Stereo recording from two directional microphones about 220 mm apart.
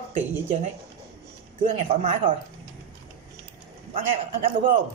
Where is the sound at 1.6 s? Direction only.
30° right (ahead or behind).